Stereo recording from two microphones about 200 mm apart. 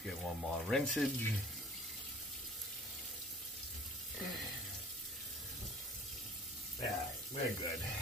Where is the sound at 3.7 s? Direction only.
Centre (ahead or behind).